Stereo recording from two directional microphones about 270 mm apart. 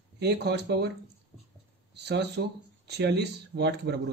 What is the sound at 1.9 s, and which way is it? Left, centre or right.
A man's voice, right.